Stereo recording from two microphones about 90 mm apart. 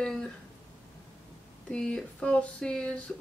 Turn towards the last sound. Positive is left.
turn(degrees=10)  # may be behind; listen again after turning